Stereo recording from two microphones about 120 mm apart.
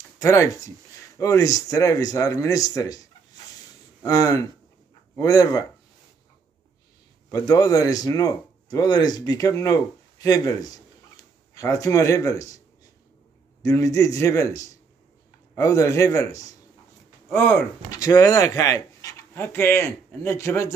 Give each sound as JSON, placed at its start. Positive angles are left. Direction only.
{"t": 0.2, "sound": "speech", "side_deg": 25}
{"t": 4.0, "sound": "speech", "side_deg": 30}
{"t": 7.2, "sound": "speech", "side_deg": 30}
{"t": 13.6, "sound": "speech", "side_deg": 25}
{"t": 17.3, "sound": "speech", "side_deg": 15}
{"t": 17.9, "sound": "speech", "side_deg": 30}